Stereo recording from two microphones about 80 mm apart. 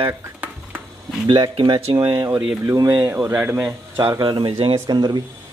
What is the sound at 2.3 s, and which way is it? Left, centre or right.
Speech, right.